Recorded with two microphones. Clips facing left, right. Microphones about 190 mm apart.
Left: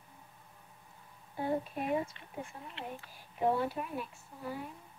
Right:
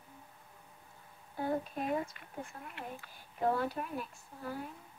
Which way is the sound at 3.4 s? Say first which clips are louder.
Left 1 dB; 10° left (ahead or behind).